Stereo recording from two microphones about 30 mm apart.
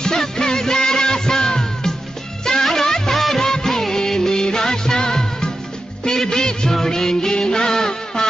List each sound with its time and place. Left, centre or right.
0.0 s music: centre
2.4 s music of bollywood: centre
3.2 s music: centre
3.4 s music: centre